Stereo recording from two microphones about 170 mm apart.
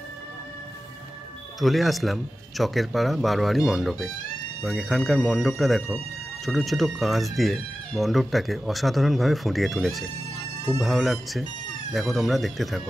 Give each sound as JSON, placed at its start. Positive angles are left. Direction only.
{"t": 1.6, "sound": "speech", "side_deg": 0}